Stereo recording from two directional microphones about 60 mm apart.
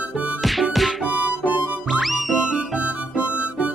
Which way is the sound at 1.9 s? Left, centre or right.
Centre.